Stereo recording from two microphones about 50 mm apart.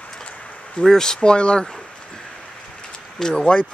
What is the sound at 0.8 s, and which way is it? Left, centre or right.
Speech, centre.